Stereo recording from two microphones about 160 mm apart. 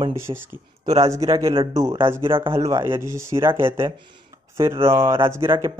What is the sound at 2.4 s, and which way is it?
Speech, 15° right (ahead or behind).